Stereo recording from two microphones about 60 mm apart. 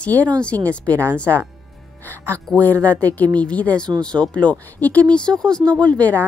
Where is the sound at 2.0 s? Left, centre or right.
Left.